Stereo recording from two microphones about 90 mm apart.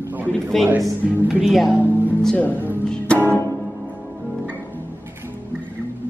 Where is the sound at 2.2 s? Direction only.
5° left (ahead or behind).